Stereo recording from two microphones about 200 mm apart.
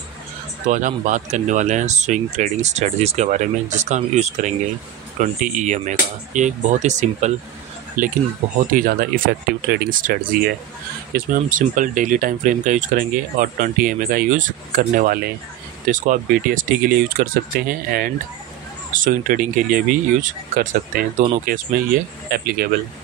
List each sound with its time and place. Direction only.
0.7 s speech: 40° right (ahead or behind)